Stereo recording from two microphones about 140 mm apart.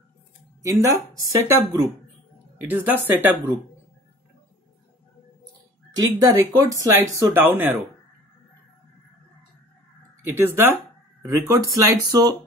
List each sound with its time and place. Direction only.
0.6 s speech: 20° right (ahead or behind)
2.6 s a woman's voice: 10° right (ahead or behind)
5.9 s speech: 25° right (ahead or behind)
10.3 s a woman's voice: 15° right (ahead or behind)